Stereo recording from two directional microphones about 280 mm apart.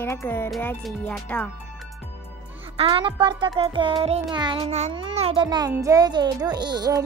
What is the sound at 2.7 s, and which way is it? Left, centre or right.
Music, centre.